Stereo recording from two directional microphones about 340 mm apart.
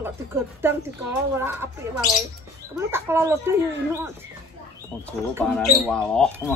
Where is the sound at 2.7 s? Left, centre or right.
Centre.